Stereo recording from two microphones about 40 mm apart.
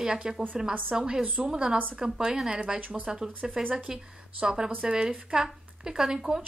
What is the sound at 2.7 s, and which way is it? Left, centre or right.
Speech, right.